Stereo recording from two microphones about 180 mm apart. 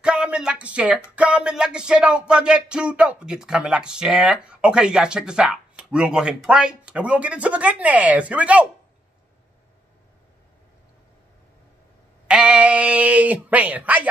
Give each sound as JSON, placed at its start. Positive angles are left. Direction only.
{"t": 0.0, "sound": "a sound", "side_deg": -5}
{"t": 1.1, "sound": "speech", "side_deg": -5}
{"t": 12.3, "sound": "speech", "side_deg": -5}